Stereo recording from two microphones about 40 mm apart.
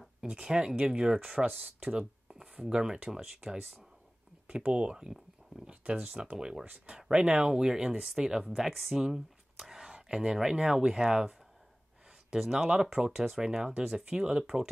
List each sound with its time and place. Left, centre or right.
0.2 s speech: centre
6.6 s speech: right
7.5 s speech: centre
8.5 s speech: centre
12.4 s speech: centre
13.0 s speech: centre